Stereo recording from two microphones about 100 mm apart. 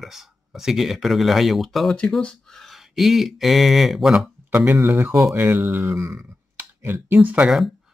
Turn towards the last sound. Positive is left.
turn(degrees=-15)  # may be behind; listen again after turning